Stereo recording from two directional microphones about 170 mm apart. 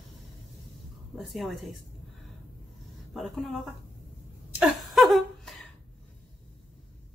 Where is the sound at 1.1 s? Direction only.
Centre (ahead or behind).